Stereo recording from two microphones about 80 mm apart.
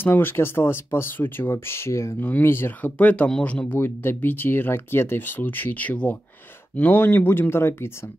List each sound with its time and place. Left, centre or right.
0.0 s speech: left
2.1 s speech: left